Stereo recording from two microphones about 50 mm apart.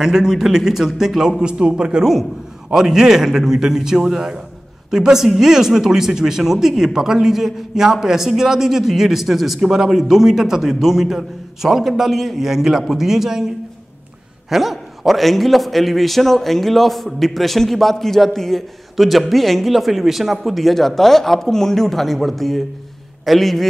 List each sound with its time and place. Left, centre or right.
0.0 s a man's voice: centre
14.5 s a man's voice: centre